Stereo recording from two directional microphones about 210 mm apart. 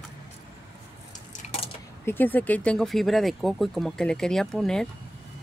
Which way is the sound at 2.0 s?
10° left (ahead or behind).